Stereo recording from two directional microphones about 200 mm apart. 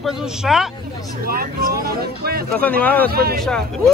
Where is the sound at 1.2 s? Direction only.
45° right (ahead or behind).